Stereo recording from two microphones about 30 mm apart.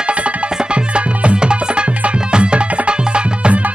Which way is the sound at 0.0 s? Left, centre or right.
Right.